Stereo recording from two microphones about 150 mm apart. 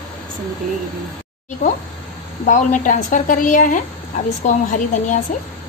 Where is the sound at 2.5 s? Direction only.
55° left (ahead or behind).